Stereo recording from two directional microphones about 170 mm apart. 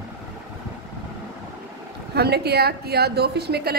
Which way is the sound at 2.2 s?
70° right (ahead or behind).